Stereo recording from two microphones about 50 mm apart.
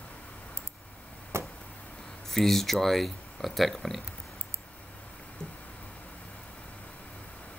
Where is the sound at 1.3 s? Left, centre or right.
Right.